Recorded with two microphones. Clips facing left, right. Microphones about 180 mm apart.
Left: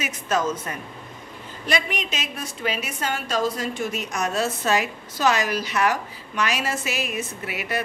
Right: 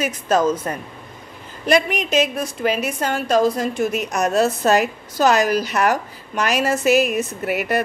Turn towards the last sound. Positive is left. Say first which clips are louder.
# right 8 dB
turn(degrees=-45)  # may be behind; listen again after turning